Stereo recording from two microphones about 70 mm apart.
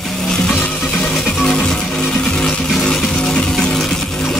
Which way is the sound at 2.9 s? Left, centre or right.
Centre.